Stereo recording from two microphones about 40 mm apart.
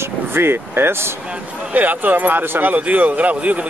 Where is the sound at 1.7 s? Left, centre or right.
Right.